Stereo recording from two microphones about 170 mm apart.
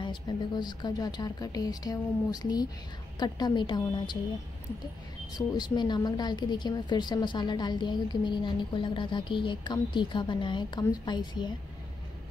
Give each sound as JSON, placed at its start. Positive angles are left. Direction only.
{"t": 0.0, "sound": "a woman's voice", "side_deg": 25}
{"t": 5.5, "sound": "a woman's voice", "side_deg": 25}